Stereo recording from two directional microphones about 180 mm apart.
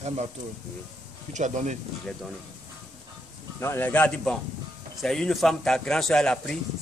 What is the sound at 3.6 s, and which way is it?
Speech, 10° left (ahead or behind).